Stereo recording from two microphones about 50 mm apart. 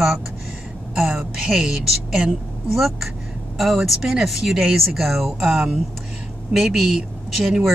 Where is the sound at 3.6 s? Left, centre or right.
Centre.